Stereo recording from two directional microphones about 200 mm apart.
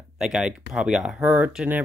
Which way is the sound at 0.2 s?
5° right (ahead or behind).